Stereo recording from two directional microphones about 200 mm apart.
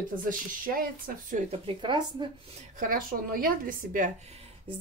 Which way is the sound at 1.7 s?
25° right (ahead or behind).